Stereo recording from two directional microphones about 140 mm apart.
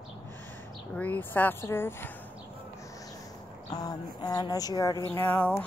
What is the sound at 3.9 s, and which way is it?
Speech, 30° left (ahead or behind).